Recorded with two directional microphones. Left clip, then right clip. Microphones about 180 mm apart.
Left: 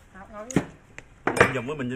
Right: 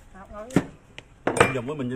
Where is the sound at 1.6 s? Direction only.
5° right (ahead or behind).